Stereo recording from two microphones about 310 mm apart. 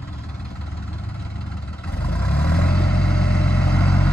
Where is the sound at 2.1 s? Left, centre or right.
Centre.